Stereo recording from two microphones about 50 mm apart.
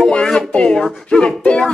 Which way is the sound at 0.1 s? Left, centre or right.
Centre.